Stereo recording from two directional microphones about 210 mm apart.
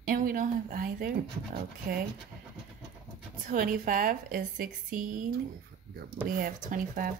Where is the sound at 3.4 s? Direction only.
40° right (ahead or behind).